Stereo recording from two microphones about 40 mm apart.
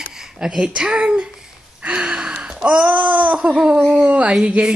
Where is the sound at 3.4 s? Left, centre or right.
Right.